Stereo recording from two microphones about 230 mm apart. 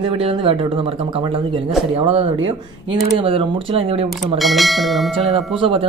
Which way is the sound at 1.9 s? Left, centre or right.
Right.